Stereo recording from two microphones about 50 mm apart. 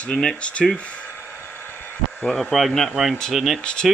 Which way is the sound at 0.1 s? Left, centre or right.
Centre.